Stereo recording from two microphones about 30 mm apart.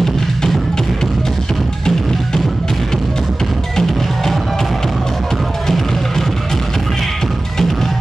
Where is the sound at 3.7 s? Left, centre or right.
Centre.